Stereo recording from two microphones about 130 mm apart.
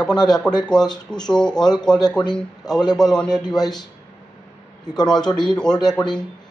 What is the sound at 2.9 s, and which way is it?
Speech, 5° left (ahead or behind).